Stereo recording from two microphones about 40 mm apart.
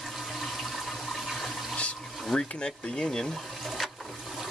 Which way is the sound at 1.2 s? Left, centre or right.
Centre.